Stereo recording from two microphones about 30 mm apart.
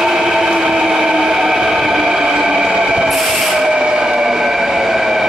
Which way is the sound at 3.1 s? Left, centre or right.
Centre.